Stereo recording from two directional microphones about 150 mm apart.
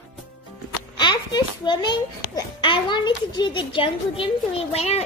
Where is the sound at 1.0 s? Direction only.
30° left (ahead or behind).